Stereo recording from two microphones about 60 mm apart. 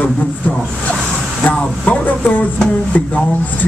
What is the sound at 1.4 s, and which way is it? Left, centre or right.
Speech, left.